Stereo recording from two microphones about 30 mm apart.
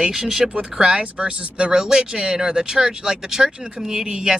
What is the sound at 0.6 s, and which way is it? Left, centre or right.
Speech, right.